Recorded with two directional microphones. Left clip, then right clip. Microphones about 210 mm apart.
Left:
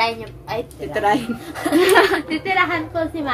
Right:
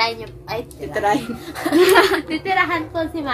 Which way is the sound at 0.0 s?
10° right (ahead or behind).